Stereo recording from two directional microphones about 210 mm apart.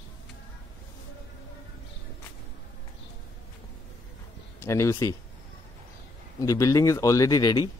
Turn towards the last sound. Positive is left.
turn(degrees=20)  # may be behind; listen again after turning